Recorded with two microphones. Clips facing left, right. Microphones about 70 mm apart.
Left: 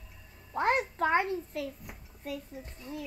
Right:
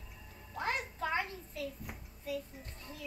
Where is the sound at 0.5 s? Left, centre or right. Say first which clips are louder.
Left 9 dB; left.